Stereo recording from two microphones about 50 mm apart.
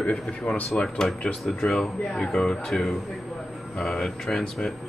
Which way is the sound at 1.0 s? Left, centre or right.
Centre.